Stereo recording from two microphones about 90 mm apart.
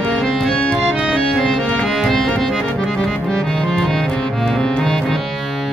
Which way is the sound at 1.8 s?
5° left (ahead or behind).